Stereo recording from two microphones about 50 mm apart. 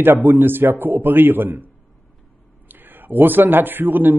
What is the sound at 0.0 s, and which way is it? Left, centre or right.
A man's voice, right.